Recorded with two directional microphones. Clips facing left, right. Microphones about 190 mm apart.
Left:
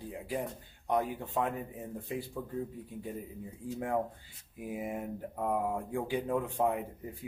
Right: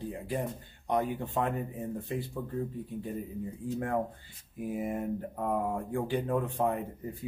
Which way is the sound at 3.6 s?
10° left (ahead or behind).